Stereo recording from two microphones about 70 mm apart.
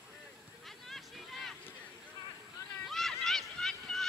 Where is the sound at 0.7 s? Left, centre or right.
Centre.